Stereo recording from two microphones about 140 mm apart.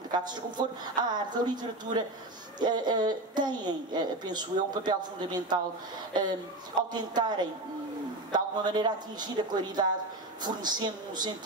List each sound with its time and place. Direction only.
0.1 s speech: 30° right (ahead or behind)